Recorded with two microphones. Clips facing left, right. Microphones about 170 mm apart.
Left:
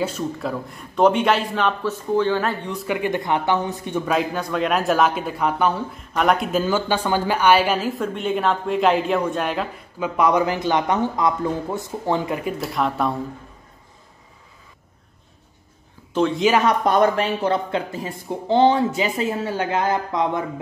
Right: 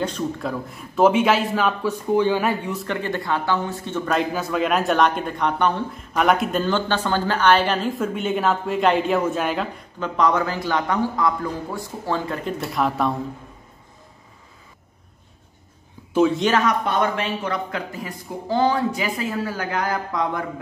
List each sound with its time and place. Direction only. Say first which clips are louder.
0.0 s speech: even; 5° left (ahead or behind)
2.9 s speech: left 4 dB; 15° left (ahead or behind)
4.1 s speech: right 1 dB; centre (ahead or behind)
8.0 s speech: even; centre (ahead or behind); by 12.5 s 15° left (ahead or behind)
12.5 s speech: right 3 dB; centre (ahead or behind)
16.1 s speech: right 2 dB; 5° right (ahead or behind)
16.6 s speech: left 4 dB; 40° left (ahead or behind); by 20.6 s 20° left (ahead or behind)